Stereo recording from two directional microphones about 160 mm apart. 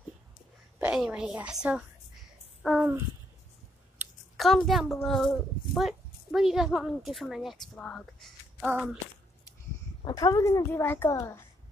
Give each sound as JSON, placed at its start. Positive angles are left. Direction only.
{"t": 0.7, "sound": "a woman's voice", "side_deg": -5}
{"t": 2.6, "sound": "a sound", "side_deg": 0}
{"t": 4.4, "sound": "a woman's voice", "side_deg": 0}
{"t": 10.0, "sound": "a child's voice", "side_deg": 25}